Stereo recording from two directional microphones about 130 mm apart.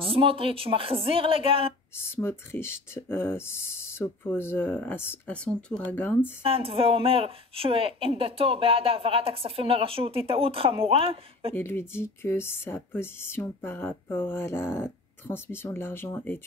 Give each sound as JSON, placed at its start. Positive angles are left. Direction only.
{"t": 0.0, "sound": "a woman's voice", "side_deg": -45}
{"t": 2.0, "sound": "speech", "side_deg": 15}
{"t": 6.4, "sound": "a woman's voice", "side_deg": -45}
{"t": 11.5, "sound": "speech", "side_deg": 20}